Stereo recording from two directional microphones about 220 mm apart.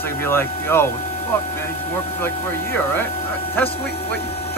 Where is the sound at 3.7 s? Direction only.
25° left (ahead or behind).